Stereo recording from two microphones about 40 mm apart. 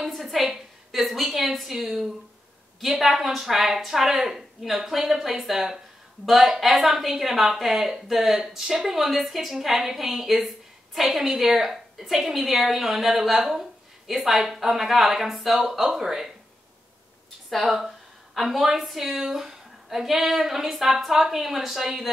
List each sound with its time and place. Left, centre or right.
0.2 s a woman's voice: centre
17.5 s a woman's voice: centre